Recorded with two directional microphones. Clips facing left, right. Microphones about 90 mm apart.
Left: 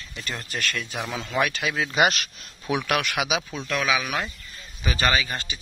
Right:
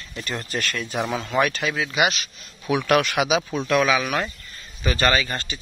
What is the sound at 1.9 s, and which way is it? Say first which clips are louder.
Speech: left 2 dB; 40° left (ahead or behind).